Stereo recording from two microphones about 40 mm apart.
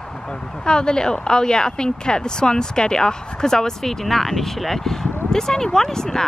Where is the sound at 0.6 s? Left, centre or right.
Left.